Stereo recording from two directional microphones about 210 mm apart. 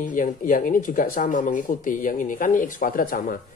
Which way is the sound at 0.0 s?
40° left (ahead or behind).